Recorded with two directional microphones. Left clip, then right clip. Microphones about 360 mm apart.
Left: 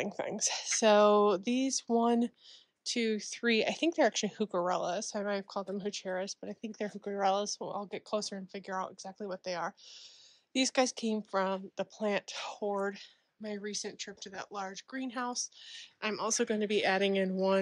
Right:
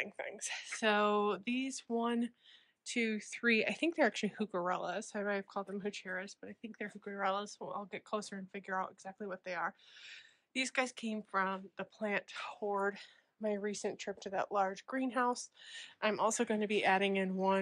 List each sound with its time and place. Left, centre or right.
0.0 s speech: centre